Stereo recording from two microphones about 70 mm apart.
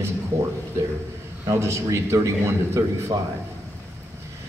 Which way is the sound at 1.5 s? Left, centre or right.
Right.